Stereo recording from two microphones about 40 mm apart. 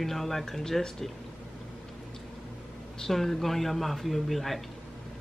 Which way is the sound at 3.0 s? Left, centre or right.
Centre.